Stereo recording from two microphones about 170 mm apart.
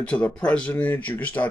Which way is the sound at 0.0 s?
5° left (ahead or behind).